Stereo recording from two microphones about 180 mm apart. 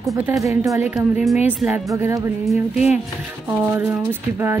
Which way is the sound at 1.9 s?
15° right (ahead or behind).